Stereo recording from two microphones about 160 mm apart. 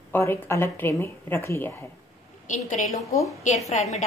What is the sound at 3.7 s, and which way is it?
Speech, 45° left (ahead or behind).